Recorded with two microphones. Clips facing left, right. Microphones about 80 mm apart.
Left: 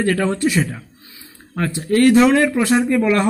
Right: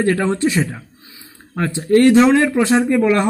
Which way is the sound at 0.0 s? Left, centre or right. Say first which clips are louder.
Right 1 dB; right.